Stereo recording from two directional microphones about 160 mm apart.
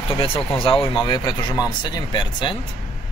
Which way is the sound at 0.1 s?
35° left (ahead or behind).